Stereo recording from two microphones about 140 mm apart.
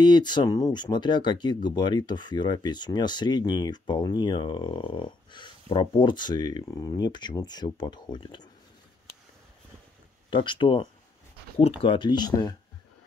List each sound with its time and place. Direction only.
0.0 s speech: 30° left (ahead or behind)
10.3 s speech: 35° left (ahead or behind)